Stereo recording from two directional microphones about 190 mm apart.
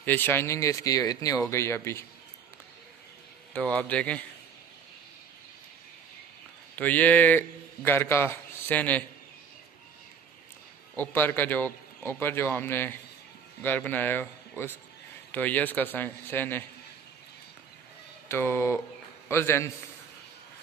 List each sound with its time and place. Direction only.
0.0 s a man's voice: 10° left (ahead or behind)
3.5 s a man's voice: 5° left (ahead or behind)
6.7 s a man's voice: 10° left (ahead or behind)
11.0 s a man's voice: 10° left (ahead or behind)
15.3 s a man's voice: 10° left (ahead or behind)
18.3 s a man's voice: 15° left (ahead or behind)